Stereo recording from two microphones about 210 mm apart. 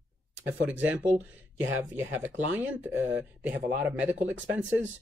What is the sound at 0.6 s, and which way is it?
Speech, 5° right (ahead or behind).